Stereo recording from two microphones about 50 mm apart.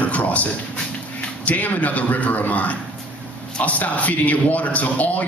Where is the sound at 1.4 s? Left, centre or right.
Left.